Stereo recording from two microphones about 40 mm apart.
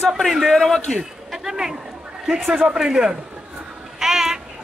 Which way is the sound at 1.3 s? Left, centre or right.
Centre.